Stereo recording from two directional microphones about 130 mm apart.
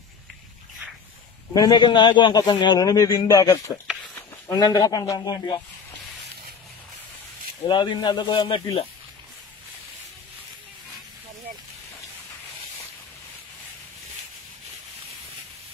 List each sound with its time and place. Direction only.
1.5 s speech: 30° left (ahead or behind)
7.6 s speech: 35° left (ahead or behind)